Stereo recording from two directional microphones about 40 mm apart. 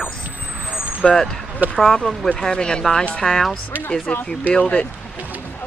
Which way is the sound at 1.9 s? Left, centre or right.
Centre.